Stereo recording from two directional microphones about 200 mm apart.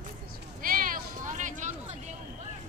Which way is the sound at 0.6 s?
45° right (ahead or behind).